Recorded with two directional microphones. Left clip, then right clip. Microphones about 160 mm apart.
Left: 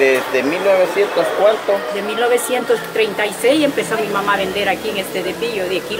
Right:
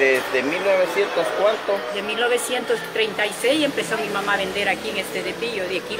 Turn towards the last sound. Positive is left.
turn(degrees=20)  # may be behind; listen again after turning